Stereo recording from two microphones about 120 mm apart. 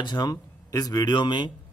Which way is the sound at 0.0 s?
35° left (ahead or behind).